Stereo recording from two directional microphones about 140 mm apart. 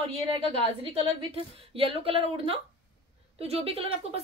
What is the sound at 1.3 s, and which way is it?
Speech, 40° right (ahead or behind).